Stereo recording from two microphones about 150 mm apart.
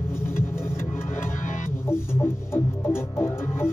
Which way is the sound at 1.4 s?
55° left (ahead or behind).